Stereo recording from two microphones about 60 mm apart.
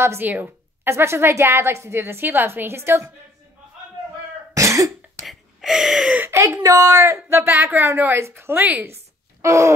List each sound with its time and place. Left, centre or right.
0.2 s speech: right
0.8 s a woman's voice: right
4.6 s cough: right
5.2 s gasp: centre
6.3 s a woman's voice: right
7.4 s speech: right
8.8 s music: right